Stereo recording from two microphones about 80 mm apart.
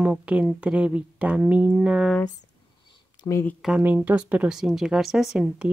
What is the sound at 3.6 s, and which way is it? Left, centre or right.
Speech, centre.